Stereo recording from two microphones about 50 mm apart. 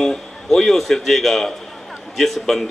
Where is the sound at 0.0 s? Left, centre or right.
Centre.